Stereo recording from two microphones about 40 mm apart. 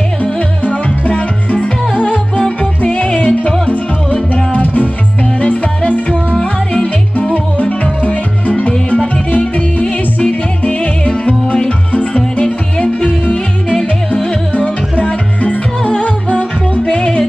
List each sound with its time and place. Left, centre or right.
0.2 s music: left
3.3 s music: centre
3.6 s music: left
5.9 s music: left
6.4 s music: left
7.6 s music: left
12.1 s music: centre
13.7 s yodeling: centre
14.5 s music: left
16.9 s music: left